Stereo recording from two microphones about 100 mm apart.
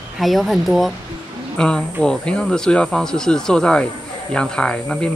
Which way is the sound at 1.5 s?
10° left (ahead or behind).